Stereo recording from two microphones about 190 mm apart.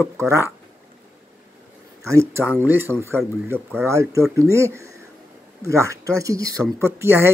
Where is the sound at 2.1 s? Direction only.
15° right (ahead or behind).